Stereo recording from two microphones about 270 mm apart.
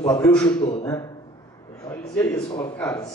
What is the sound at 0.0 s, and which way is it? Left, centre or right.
Speech, centre.